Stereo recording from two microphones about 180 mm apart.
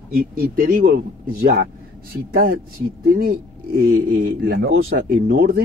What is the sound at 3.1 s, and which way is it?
Speech, 55° right (ahead or behind).